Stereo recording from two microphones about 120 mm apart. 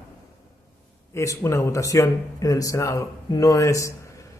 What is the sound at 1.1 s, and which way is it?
A man's voice, 25° left (ahead or behind).